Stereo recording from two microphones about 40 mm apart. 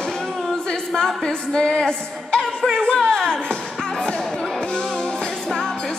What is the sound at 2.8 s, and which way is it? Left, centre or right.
Music, centre.